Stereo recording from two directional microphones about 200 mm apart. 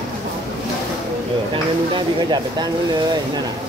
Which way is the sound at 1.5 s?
20° right (ahead or behind).